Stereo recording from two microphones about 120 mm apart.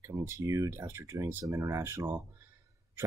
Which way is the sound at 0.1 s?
25° right (ahead or behind).